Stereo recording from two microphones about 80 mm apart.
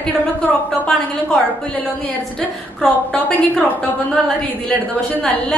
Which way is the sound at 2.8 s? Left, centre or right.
Centre.